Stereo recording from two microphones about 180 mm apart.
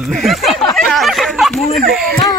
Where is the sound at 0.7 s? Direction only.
Centre (ahead or behind).